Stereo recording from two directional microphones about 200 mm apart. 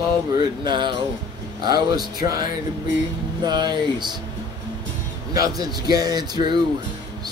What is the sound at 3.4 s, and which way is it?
Music, 20° right (ahead or behind).